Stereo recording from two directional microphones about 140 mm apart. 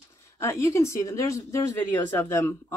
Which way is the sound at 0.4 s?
20° left (ahead or behind).